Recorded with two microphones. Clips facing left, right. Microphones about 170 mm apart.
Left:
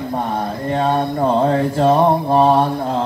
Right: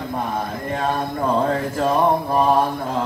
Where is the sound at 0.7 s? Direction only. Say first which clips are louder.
Left 5 dB; 35° left (ahead or behind).